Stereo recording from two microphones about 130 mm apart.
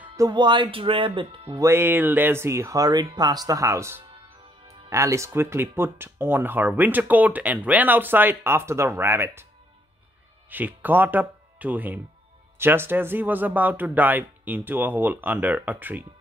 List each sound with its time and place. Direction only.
0.1 s speech: 30° right (ahead or behind)
1.6 s speech: 20° right (ahead or behind)
10.5 s speech: 15° right (ahead or behind)